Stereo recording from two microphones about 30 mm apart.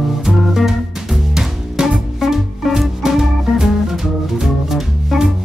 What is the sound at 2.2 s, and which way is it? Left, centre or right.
Music, centre.